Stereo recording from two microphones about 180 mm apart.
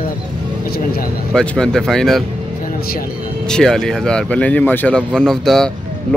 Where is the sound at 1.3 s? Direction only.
5° left (ahead or behind).